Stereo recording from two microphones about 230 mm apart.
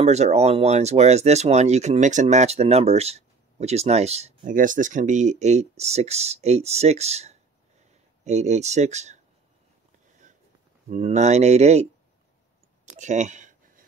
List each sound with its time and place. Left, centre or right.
0.0 s speech: right
10.9 s speech: right
12.8 s a sound: right